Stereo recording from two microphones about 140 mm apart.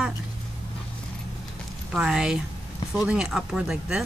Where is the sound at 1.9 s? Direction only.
5° right (ahead or behind).